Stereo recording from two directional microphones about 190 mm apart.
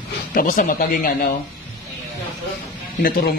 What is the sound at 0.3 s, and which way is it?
Speech, 45° left (ahead or behind).